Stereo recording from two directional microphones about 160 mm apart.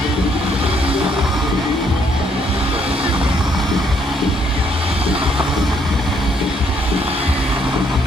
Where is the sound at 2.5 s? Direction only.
35° right (ahead or behind).